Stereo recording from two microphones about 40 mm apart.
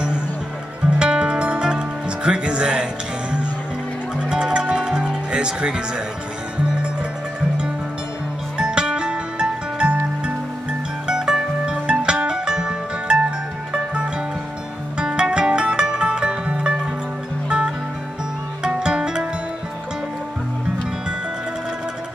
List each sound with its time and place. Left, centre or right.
0.9 s music: right
8.5 s music: right
11.1 s music: centre
15.0 s music: right
18.8 s music: centre